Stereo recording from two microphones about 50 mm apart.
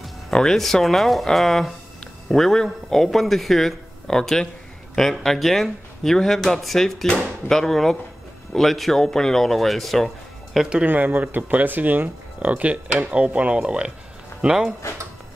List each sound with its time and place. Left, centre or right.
0.3 s a man's voice: centre
10.9 s speech: right; by 14.7 s centre